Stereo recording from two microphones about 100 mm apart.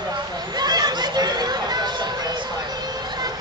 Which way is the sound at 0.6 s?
45° right (ahead or behind).